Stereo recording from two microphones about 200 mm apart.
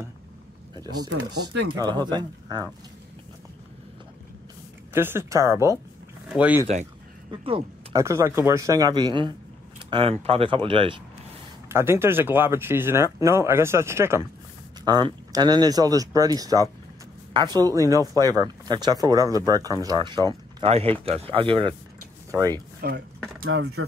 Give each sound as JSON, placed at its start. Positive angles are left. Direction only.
{"t": 0.9, "sound": "speech", "side_deg": -65}
{"t": 1.8, "sound": "speech", "side_deg": -20}
{"t": 4.9, "sound": "speech", "side_deg": -10}
{"t": 7.2, "sound": "speech", "side_deg": -25}
{"t": 8.0, "sound": "speech", "side_deg": -15}
{"t": 11.7, "sound": "speech", "side_deg": -10}
{"t": 22.8, "sound": "speech", "side_deg": -55}